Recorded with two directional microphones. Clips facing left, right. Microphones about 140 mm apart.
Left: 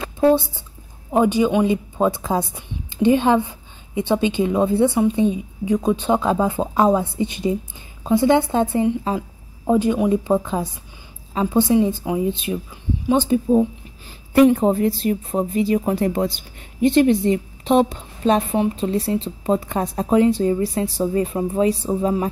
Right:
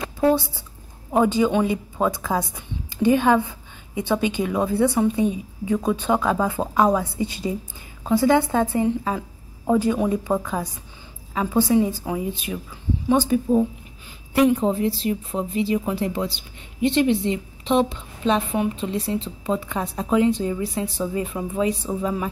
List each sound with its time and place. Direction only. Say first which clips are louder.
0.2 s a woman's voice: left 3 dB; 20° left (ahead or behind)
14.3 s a woman's voice: left 4 dB; 50° left (ahead or behind)